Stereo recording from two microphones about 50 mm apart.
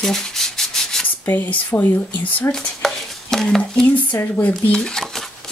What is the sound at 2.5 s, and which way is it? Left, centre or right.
Stir, centre.